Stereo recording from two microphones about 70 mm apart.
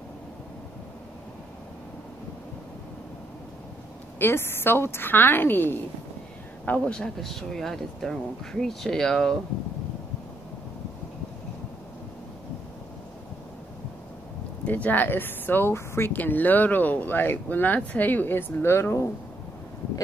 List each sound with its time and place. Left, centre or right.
4.2 s a woman's voice: left
6.9 s speech: centre
14.7 s speech: left